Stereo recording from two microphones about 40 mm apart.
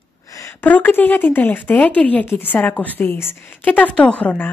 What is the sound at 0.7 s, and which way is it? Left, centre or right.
A woman's voice, left.